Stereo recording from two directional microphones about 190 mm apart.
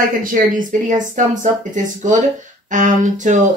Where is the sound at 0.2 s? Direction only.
45° right (ahead or behind).